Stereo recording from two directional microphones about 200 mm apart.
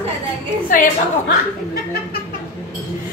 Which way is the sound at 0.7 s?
40° left (ahead or behind).